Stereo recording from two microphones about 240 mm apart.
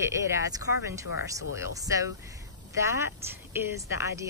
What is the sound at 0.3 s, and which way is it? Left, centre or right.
A woman's voice, centre.